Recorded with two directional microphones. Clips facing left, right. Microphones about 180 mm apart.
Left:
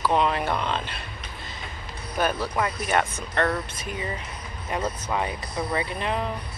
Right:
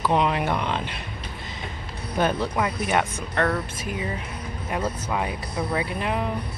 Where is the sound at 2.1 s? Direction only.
20° right (ahead or behind).